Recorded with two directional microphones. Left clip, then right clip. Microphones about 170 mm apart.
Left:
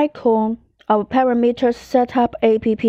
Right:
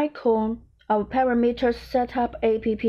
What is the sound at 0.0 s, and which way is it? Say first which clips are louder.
A woman's voice: left 6 dB; 45° left (ahead or behind).